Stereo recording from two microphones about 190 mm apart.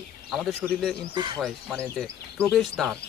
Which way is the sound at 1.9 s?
5° left (ahead or behind).